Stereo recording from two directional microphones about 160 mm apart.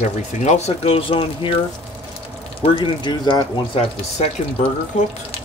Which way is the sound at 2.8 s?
30° left (ahead or behind).